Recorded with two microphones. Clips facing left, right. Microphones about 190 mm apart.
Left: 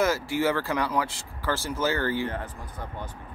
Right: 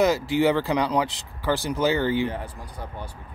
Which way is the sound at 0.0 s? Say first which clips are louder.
Right 4 dB; 20° right (ahead or behind).